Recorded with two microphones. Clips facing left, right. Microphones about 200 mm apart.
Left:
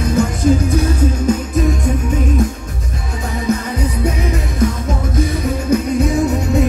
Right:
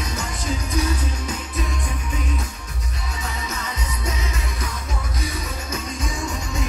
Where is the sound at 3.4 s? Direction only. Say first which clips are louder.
Left 13 dB; 55° left (ahead or behind).